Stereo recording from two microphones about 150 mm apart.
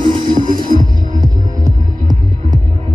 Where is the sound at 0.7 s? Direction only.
60° right (ahead or behind).